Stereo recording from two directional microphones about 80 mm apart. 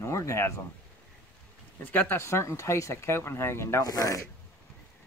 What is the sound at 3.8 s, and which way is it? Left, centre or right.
Speech, left.